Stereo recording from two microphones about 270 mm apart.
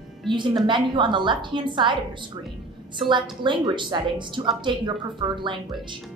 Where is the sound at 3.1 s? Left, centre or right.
Centre.